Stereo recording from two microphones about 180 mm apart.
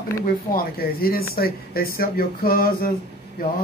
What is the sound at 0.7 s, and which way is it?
Speech, 55° left (ahead or behind).